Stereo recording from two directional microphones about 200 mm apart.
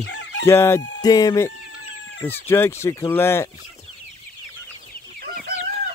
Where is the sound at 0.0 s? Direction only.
60° left (ahead or behind).